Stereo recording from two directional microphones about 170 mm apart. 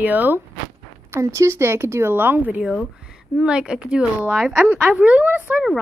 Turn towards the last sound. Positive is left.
turn(degrees=-10)  # may be behind; listen again after turning